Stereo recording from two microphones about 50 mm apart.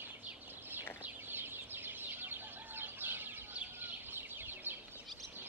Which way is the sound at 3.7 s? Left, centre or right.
Right.